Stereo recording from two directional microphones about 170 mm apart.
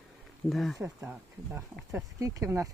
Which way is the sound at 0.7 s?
15° right (ahead or behind).